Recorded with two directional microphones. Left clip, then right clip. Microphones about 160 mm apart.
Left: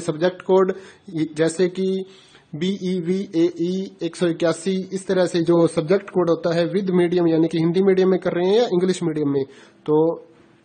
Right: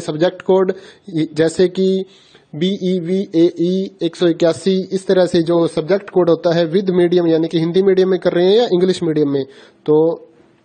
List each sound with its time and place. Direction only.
0.0 s speech: 35° right (ahead or behind)
9.8 s speech: 20° right (ahead or behind)